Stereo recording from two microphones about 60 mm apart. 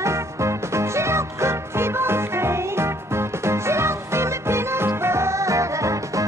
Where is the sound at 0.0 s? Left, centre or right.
Right.